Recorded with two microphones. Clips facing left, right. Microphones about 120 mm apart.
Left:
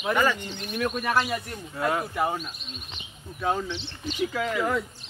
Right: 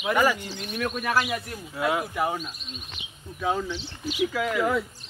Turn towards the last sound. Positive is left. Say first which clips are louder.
# right 1 dB
turn(degrees=0)  # may be behind; listen again after turning